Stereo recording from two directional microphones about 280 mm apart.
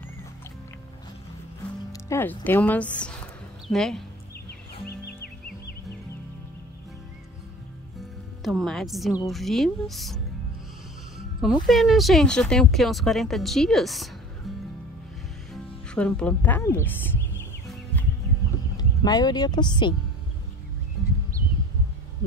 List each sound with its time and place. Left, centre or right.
1.9 s speech: centre
4.8 s music: left
8.5 s a woman's voice: centre
11.6 s a woman's voice: centre
15.5 s music: centre
18.8 s speech: centre